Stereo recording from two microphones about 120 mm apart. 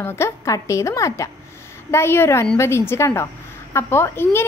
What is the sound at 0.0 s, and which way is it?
A woman's voice, 20° left (ahead or behind).